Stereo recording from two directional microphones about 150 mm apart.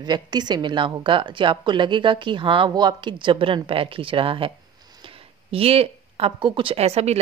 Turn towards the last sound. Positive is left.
turn(degrees=-45)  # may be behind; listen again after turning